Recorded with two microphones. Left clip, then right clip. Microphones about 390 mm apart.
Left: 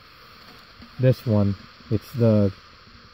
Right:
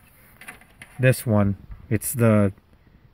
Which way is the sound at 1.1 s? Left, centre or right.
Centre.